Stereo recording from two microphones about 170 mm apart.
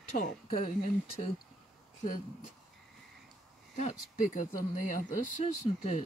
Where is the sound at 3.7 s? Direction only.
45° left (ahead or behind).